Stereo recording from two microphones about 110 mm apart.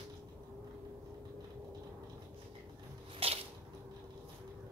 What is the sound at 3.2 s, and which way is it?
Squish, 60° right (ahead or behind).